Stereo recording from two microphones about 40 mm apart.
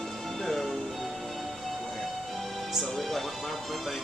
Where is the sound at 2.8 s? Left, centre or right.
Centre.